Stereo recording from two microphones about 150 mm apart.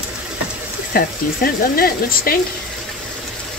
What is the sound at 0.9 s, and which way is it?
A woman's voice, 75° left (ahead or behind).